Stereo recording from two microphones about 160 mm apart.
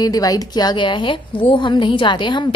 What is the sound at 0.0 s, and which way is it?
A woman's voice, 20° left (ahead or behind).